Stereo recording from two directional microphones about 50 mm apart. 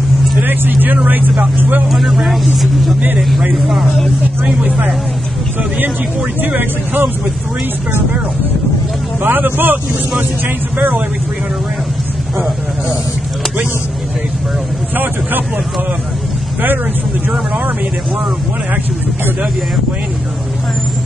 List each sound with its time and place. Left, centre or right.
0.4 s vehicle: right
1.6 s speech: right
1.9 s speech: centre
4.6 s speech: right
6.4 s speech: right
9.2 s speech: right